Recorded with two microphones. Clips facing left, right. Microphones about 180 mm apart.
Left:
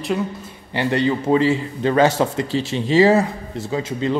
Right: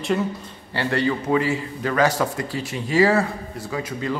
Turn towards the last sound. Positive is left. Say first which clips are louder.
# left 5 dB
turn(degrees=25)  # may be behind; listen again after turning